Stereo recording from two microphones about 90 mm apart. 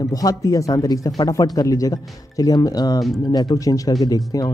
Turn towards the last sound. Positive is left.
turn(degrees=40)  # may be behind; listen again after turning